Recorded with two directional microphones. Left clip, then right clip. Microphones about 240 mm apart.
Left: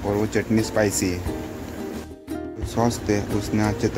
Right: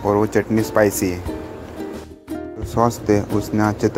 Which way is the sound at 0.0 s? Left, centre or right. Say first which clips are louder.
Right 6 dB; centre.